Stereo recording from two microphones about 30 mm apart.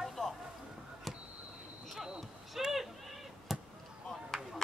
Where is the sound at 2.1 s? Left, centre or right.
Centre.